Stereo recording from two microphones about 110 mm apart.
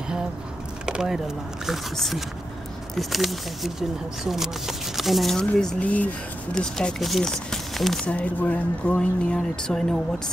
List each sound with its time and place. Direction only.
0.8 s speech: 5° right (ahead or behind)